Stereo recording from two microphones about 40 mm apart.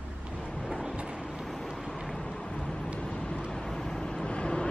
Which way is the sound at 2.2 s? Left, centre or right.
Centre.